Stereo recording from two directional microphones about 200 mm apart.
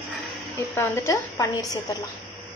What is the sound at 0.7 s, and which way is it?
Speech, 15° left (ahead or behind).